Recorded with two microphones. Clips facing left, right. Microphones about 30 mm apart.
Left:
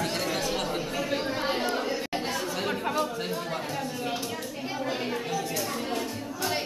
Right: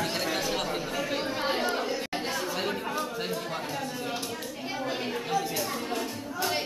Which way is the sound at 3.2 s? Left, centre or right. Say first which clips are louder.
Left 1 dB; centre.